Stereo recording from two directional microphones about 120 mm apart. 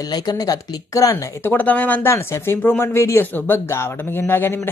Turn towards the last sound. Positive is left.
turn(degrees=20)  # may be behind; listen again after turning